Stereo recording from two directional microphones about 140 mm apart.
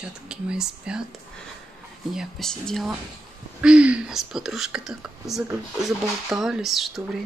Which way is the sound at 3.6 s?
10° right (ahead or behind).